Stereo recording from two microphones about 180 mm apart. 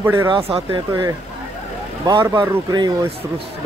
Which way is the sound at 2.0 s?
20° right (ahead or behind).